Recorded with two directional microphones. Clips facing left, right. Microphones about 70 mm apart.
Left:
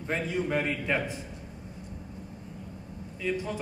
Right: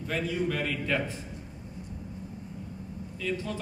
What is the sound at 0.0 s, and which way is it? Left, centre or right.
A man's voice, left.